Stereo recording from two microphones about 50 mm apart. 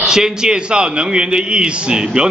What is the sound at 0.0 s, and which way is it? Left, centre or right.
A man's voice, centre.